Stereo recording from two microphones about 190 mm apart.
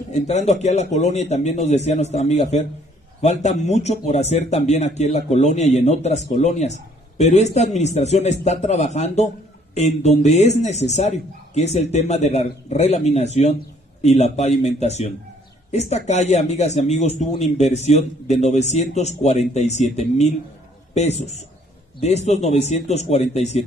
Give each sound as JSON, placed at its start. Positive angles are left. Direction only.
{"t": 0.1, "sound": "a man's voice", "side_deg": 35}